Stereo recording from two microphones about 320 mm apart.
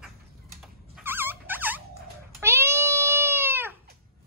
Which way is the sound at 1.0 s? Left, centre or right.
Centre.